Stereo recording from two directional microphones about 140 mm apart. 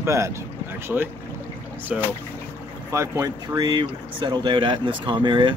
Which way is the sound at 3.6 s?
35° right (ahead or behind).